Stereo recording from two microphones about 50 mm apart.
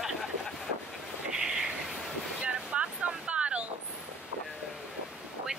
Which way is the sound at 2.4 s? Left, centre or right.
Right.